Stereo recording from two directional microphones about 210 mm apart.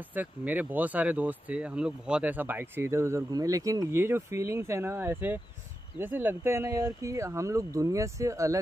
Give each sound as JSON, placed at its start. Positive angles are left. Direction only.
{"t": 0.1, "sound": "speech", "side_deg": -10}